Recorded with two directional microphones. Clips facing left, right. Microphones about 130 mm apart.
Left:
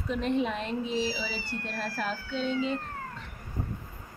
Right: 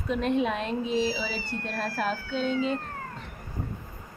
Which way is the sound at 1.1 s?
50° right (ahead or behind).